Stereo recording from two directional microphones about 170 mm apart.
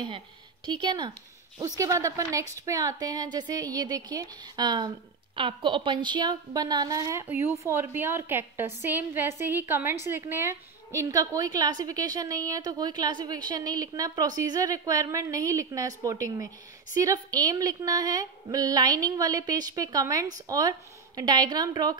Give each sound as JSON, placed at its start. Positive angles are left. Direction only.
{"t": 0.7, "sound": "a woman's voice", "side_deg": -25}